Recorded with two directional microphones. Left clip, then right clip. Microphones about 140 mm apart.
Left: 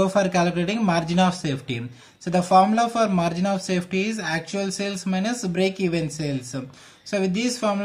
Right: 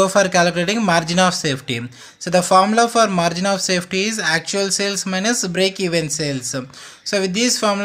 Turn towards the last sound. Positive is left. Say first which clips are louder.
# right 6 dB
turn(degrees=-25)  # may be behind; listen again after turning